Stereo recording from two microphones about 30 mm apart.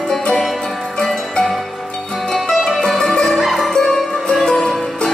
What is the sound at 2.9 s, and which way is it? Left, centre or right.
Music, centre.